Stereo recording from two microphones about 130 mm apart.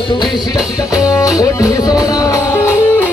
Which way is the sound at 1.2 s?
25° left (ahead or behind).